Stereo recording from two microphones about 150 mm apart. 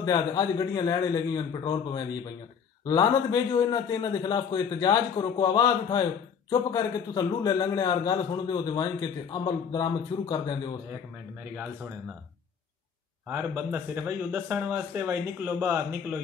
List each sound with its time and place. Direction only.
0.0 s a man's voice: 25° left (ahead or behind)
11.5 s speech: 10° right (ahead or behind)
13.3 s speech: 15° right (ahead or behind)